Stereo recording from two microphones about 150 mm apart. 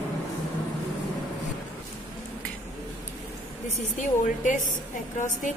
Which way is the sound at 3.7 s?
55° left (ahead or behind).